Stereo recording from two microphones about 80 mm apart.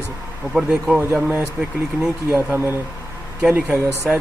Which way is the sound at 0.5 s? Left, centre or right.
Centre.